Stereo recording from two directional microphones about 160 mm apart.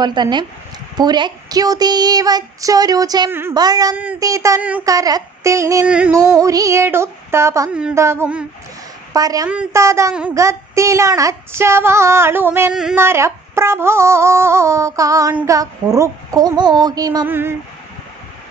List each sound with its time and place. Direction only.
0.0 s speech: 30° right (ahead or behind)
3.9 s female singing: 10° right (ahead or behind)
4.2 s speech: 20° right (ahead or behind)
5.9 s female singing: 5° right (ahead or behind)
6.1 s female singing: 20° right (ahead or behind)
9.1 s speech: 20° right (ahead or behind)
9.5 s female singing: 10° right (ahead or behind)
15.4 s speech: 20° right (ahead or behind)
17.3 s female singing: 15° right (ahead or behind)